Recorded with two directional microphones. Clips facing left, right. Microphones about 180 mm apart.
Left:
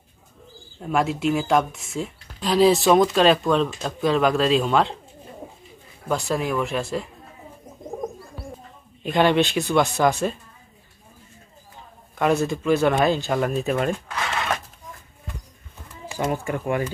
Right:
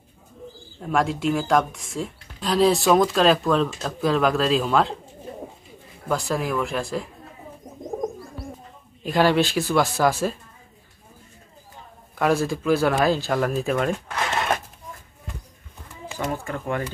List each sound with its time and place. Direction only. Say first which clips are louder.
0.7 s speech: even; 5° left (ahead or behind)
6.0 s speech: left 1 dB; centre (ahead or behind)
9.0 s speech: left 1 dB; centre (ahead or behind)
12.2 s speech: even; centre (ahead or behind)
16.3 s speech: left 3 dB; 15° left (ahead or behind)